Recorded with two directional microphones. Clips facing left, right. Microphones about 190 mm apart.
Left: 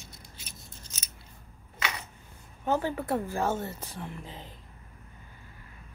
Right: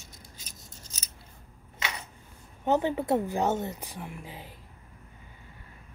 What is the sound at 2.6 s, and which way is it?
A woman's voice, 20° right (ahead or behind).